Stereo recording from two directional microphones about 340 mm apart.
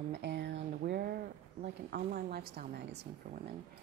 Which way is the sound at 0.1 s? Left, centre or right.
Right.